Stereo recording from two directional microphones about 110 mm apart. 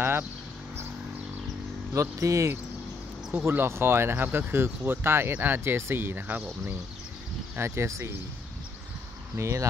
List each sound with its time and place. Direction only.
2.0 s speech: 30° right (ahead or behind)
9.4 s speech: 25° right (ahead or behind)